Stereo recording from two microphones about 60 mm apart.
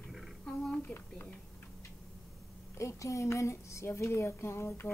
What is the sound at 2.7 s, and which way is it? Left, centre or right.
Speech, left.